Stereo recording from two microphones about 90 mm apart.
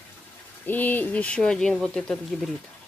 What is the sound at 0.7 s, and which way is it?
Speech, 20° left (ahead or behind).